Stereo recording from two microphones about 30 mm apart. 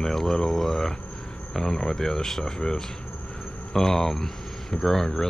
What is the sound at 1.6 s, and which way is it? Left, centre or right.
Speech, centre.